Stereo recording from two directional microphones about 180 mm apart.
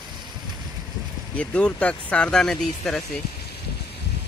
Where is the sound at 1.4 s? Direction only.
5° left (ahead or behind).